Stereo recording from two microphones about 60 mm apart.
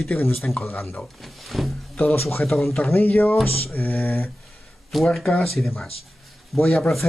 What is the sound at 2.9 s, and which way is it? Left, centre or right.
Speech, left.